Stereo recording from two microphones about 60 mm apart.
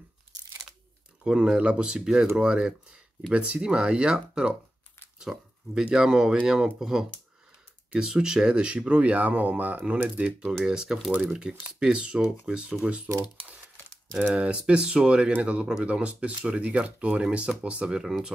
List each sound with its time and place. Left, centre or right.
1.2 s speech: centre
14.3 s speech: centre